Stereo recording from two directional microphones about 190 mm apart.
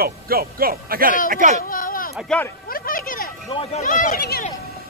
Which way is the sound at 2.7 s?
50° left (ahead or behind).